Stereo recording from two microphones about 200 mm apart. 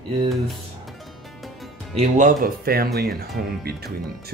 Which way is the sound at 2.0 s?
40° right (ahead or behind).